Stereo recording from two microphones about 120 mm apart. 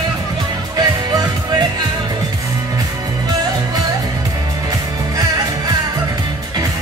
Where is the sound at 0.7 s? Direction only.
35° right (ahead or behind).